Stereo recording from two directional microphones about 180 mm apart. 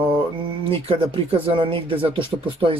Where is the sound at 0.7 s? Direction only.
30° right (ahead or behind).